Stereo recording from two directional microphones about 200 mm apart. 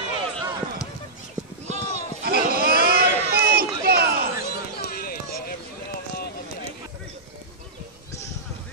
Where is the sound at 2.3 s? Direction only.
50° right (ahead or behind).